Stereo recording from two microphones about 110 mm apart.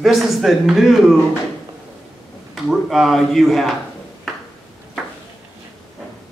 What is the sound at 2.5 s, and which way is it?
A man's voice, centre (ahead or behind).